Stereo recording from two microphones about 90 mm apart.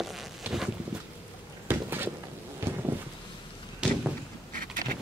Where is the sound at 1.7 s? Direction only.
25° right (ahead or behind).